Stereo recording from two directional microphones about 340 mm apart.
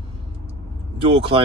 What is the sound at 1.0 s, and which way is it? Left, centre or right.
Speech, centre.